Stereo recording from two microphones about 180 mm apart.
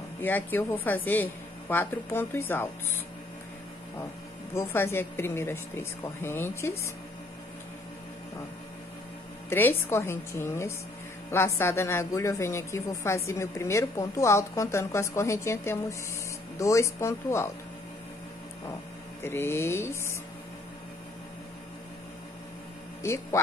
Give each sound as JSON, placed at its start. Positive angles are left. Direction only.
{"t": 0.2, "sound": "a woman's voice", "side_deg": 10}
{"t": 4.6, "sound": "a woman's voice", "side_deg": 15}
{"t": 9.5, "sound": "a woman's voice", "side_deg": 10}
{"t": 19.2, "sound": "a woman's voice", "side_deg": 15}
{"t": 23.0, "sound": "a woman's voice", "side_deg": 15}